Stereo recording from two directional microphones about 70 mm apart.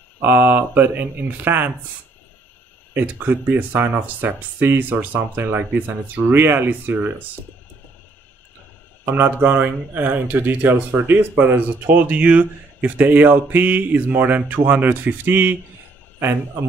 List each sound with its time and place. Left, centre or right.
0.2 s speech: right
2.9 s speech: right
9.0 s speech: right